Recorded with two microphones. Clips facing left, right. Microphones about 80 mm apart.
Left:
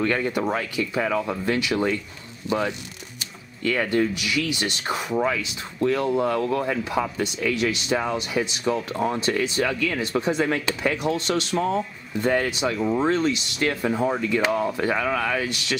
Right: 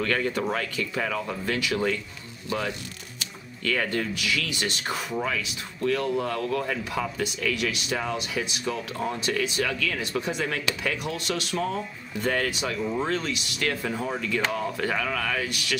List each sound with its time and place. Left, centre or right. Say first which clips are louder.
0.0 s speech: left 3 dB; left
12.2 s speech: left 4 dB; left